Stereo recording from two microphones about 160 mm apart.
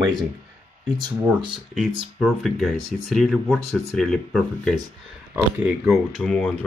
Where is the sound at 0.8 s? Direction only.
Centre (ahead or behind).